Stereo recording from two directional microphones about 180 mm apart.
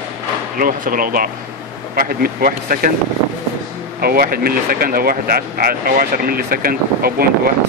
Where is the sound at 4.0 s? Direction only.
55° right (ahead or behind).